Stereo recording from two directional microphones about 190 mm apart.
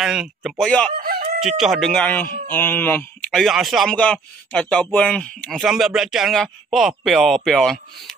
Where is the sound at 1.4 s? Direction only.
Centre (ahead or behind).